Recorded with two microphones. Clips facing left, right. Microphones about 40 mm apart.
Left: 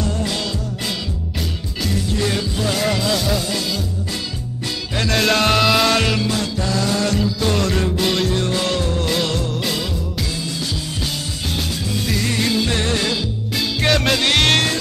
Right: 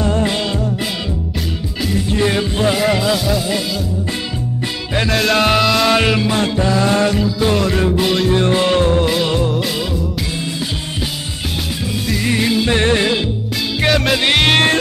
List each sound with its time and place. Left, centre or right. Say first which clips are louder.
0.0 s music: right 6 dB; right
2.1 s music: right 7 dB; right
2.7 s music: right 2 dB; centre
5.1 s music: right 2 dB; centre
5.9 s music: right 4 dB; centre
6.3 s music: right 6 dB; right
7.1 s music: right 4 dB; centre
8.3 s music: right 6 dB; right
9.0 s music: right 5 dB; centre
12.2 s music: right 4 dB; centre
12.7 s music: right 6 dB; right
13.8 s music: right 3 dB; centre